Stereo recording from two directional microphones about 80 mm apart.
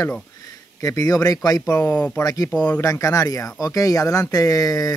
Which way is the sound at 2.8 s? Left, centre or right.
Left.